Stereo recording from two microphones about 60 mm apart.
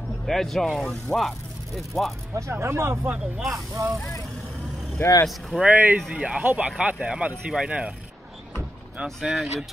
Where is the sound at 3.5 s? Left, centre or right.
Right.